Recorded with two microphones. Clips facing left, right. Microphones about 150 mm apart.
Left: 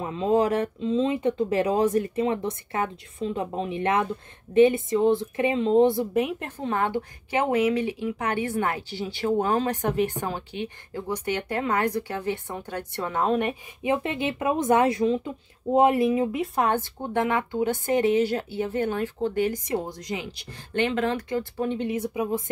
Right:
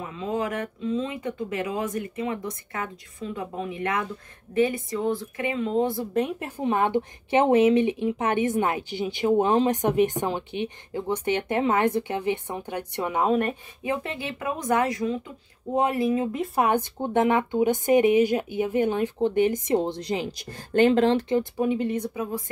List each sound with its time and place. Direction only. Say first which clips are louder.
0.0 s speech: left 6 dB; 30° left (ahead or behind)
6.4 s speech: right 3 dB; 15° right (ahead or behind)
13.8 s speech: left 4 dB; 20° left (ahead or behind)
16.3 s speech: right 1 dB; 10° right (ahead or behind)
21.6 s speech: right 2 dB; centre (ahead or behind); by 22.4 s 15° left (ahead or behind)